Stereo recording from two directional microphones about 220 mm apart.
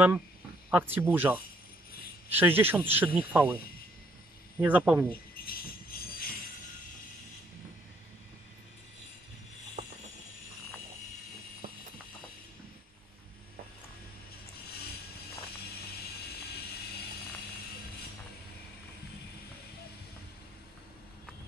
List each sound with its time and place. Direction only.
0.7 s speech: 10° right (ahead or behind)
4.6 s speech: 10° right (ahead or behind)
5.4 s jingle bell: 40° left (ahead or behind)
9.8 s a sound: 30° right (ahead or behind)